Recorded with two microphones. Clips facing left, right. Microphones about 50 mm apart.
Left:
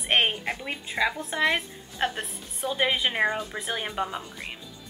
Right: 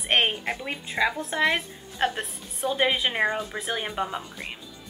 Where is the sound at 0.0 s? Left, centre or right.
Centre.